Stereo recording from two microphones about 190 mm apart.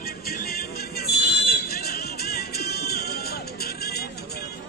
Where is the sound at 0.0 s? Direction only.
50° left (ahead or behind).